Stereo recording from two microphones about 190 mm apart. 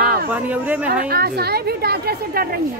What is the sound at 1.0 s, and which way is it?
A woman's voice, 55° right (ahead or behind).